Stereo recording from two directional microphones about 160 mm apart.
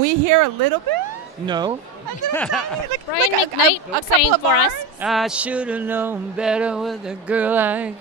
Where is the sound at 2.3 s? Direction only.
5° left (ahead or behind).